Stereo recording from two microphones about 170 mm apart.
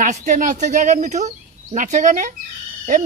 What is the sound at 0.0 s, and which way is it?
Speech, 45° right (ahead or behind).